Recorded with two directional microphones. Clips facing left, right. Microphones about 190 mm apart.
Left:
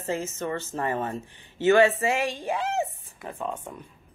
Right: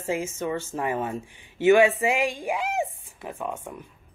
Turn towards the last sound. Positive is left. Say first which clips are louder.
# even
turn(degrees=-10)  # may be behind; listen again after turning